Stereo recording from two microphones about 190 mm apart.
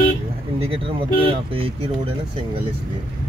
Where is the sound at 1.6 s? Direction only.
30° right (ahead or behind).